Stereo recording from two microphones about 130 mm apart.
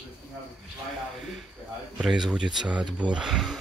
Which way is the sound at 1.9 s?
5° right (ahead or behind).